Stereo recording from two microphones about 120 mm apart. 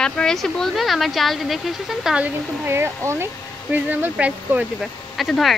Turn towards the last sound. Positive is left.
turn(degrees=0)  # may be behind; listen again after turning